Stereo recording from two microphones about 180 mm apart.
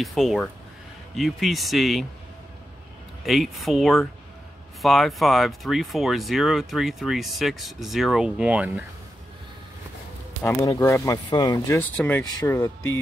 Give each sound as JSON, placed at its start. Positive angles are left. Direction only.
{"t": 0.0, "sound": "speech", "side_deg": 0}
{"t": 3.3, "sound": "speech", "side_deg": 0}
{"t": 10.8, "sound": "speech", "side_deg": 20}
{"t": 12.4, "sound": "speech", "side_deg": 20}